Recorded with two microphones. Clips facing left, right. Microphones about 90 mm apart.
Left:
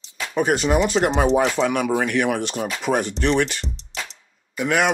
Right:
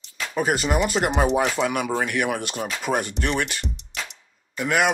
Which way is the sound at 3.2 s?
10° right (ahead or behind).